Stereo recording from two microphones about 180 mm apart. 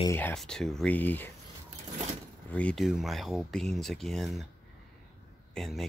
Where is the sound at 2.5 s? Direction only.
5° left (ahead or behind).